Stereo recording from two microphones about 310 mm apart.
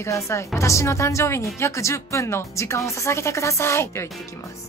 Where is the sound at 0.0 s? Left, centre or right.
Centre.